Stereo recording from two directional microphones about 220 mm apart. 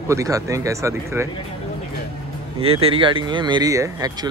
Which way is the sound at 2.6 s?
25° right (ahead or behind).